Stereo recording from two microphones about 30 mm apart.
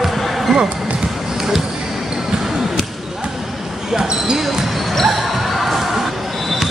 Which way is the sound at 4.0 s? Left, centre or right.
Right.